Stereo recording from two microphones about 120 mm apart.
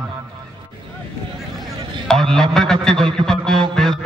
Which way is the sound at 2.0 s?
5° left (ahead or behind).